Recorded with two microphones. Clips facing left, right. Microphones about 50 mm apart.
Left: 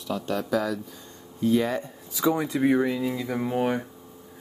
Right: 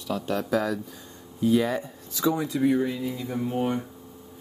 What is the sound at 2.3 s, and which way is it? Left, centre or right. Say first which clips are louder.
Speech: left 1 dB; left.